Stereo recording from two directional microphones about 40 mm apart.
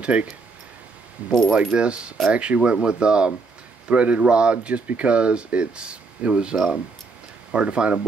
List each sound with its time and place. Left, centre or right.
0.0 s speech: right
1.5 s speech: right